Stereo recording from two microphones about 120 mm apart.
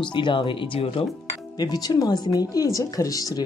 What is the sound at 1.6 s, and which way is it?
Speech, 35° left (ahead or behind).